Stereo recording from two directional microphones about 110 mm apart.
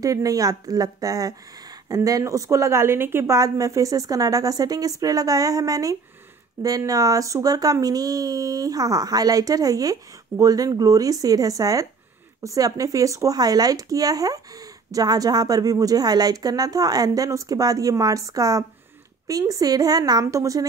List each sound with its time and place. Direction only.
0.0 s a woman's voice: 30° right (ahead or behind)
3.3 s a woman's voice: 30° right (ahead or behind)